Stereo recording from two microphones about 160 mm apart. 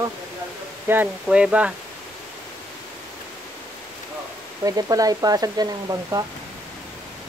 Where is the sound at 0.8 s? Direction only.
10° right (ahead or behind).